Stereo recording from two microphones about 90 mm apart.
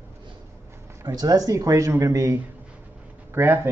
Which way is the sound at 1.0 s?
45° right (ahead or behind).